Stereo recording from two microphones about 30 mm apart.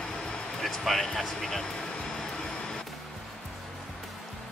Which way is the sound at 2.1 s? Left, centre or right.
Centre.